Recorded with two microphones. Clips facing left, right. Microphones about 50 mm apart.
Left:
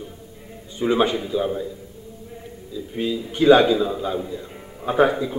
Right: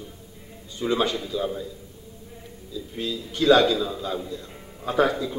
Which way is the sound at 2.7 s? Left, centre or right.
Left.